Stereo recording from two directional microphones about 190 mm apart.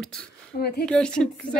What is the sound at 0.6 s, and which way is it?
Speech, 55° left (ahead or behind).